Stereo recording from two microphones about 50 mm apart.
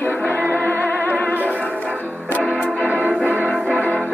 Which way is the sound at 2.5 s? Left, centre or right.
Left.